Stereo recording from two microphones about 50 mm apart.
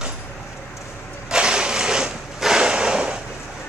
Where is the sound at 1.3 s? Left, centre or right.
Centre.